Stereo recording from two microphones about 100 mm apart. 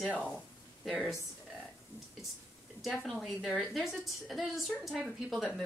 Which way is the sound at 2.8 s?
Centre (ahead or behind).